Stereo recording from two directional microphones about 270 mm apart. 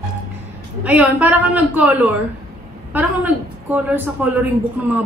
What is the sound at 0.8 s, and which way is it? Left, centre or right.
A woman's voice, centre.